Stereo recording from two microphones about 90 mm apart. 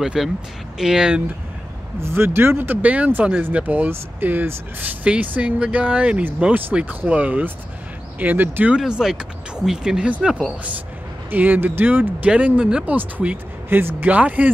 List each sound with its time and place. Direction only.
0.0 s speech: 5° right (ahead or behind)
2.0 s speech: 30° right (ahead or behind)
8.7 s speech: 10° right (ahead or behind)